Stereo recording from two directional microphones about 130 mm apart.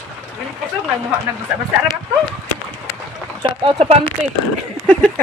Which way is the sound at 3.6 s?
50° right (ahead or behind).